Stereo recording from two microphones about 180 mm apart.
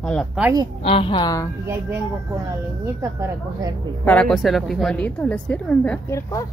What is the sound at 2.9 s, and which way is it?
Speech, 15° right (ahead or behind).